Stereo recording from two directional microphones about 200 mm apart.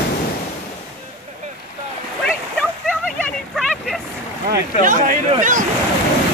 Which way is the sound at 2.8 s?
5° left (ahead or behind).